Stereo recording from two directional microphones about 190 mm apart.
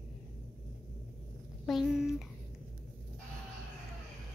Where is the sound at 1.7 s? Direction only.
Centre (ahead or behind).